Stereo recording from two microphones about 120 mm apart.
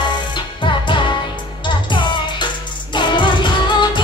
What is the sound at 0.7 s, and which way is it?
Music, 40° left (ahead or behind).